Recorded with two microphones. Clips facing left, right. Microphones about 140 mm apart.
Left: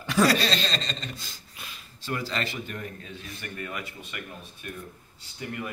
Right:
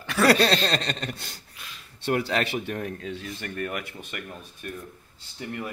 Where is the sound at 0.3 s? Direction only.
60° right (ahead or behind); by 4.7 s 45° right (ahead or behind).